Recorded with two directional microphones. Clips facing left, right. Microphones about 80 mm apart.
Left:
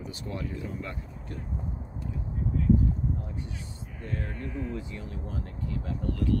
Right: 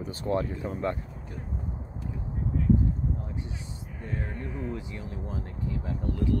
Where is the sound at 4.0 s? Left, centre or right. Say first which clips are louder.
Even; centre.